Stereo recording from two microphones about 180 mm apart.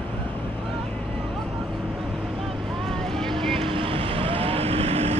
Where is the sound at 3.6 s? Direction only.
30° right (ahead or behind).